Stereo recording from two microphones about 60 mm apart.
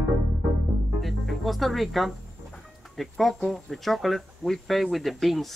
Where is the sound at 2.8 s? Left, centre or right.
Centre.